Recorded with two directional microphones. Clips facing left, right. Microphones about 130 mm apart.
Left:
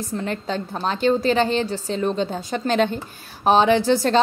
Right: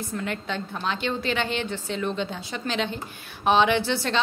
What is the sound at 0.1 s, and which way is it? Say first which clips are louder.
A woman's voice: left 5 dB; 35° left (ahead or behind).